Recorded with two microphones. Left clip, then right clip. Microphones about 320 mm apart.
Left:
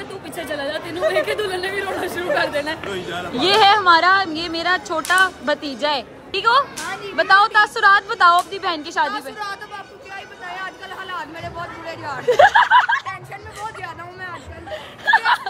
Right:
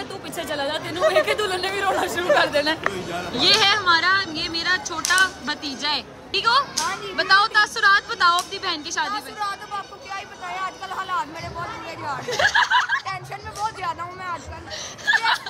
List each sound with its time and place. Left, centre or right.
0.4 s speech: centre
2.5 s speech: right
3.1 s a woman's voice: centre
10.1 s a sound: centre
12.0 s speech: centre
13.7 s vehicle: centre
14.7 s laughter: centre